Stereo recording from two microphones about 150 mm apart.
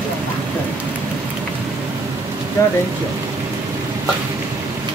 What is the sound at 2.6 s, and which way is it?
Speech, 20° left (ahead or behind).